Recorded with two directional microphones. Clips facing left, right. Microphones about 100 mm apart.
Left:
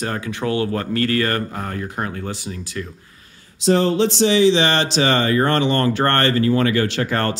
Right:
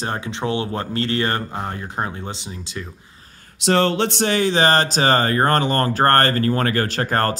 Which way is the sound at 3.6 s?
70° right (ahead or behind).